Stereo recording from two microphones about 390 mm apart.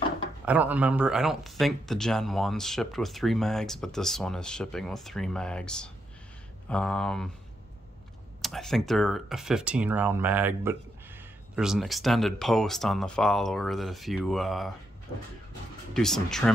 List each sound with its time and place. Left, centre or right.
0.5 s speech: centre
8.4 s speech: centre
15.9 s speech: centre